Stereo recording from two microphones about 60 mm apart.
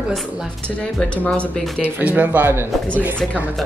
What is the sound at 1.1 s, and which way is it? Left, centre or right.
Speech, left.